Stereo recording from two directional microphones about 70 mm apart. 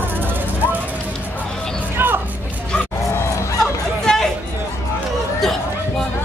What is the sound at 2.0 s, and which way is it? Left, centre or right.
Music, right.